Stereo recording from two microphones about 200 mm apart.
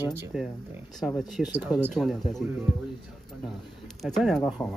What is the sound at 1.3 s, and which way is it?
Speech, 10° right (ahead or behind).